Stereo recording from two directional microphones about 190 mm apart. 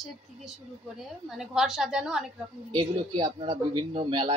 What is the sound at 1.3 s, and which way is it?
Speech, centre (ahead or behind).